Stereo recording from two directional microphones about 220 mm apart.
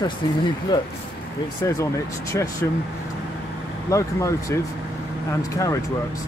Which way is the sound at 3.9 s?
15° left (ahead or behind).